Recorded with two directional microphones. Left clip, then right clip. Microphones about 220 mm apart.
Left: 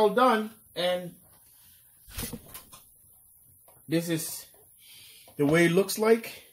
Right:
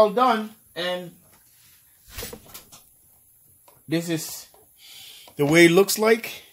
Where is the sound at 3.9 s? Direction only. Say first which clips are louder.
Right 3 dB; 20° right (ahead or behind).